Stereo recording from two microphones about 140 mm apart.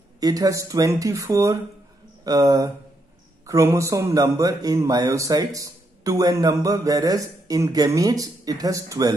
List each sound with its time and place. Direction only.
0.2 s a man's voice: 25° right (ahead or behind)